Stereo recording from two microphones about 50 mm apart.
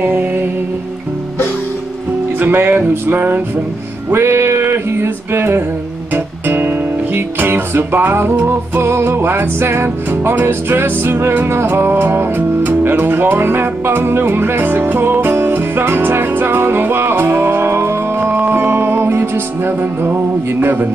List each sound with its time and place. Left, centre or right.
0.0 s music: right
2.3 s speech: right
4.1 s music: right
18.3 s music: right
20.6 s a man's voice: right